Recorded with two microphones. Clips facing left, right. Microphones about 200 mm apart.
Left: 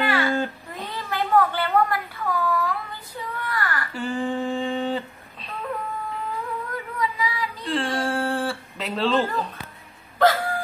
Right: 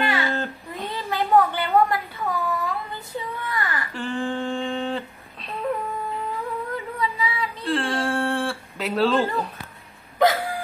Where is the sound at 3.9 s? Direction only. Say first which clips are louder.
Left 1 dB; 5° left (ahead or behind).